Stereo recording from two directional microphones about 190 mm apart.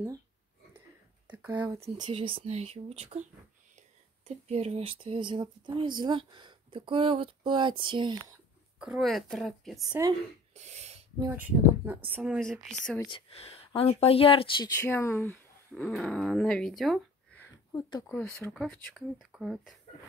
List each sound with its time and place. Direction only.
0.7 s a sound: 10° right (ahead or behind)
2.0 s speech: 25° right (ahead or behind)
4.3 s speech: 35° right (ahead or behind)
8.7 s speech: 5° right (ahead or behind)
10.5 s a sound: 35° right (ahead or behind)
11.2 s speech: 10° right (ahead or behind)
13.1 s speech: 30° left (ahead or behind)
14.8 s speech: 15° left (ahead or behind)
17.7 s speech: 20° left (ahead or behind)
18.1 s speech: 10° left (ahead or behind)